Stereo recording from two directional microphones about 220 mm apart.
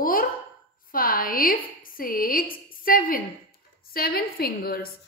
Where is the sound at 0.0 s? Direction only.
40° left (ahead or behind).